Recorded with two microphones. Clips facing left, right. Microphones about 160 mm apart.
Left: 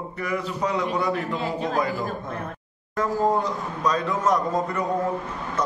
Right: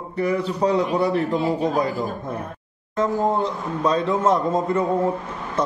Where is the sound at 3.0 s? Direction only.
25° right (ahead or behind).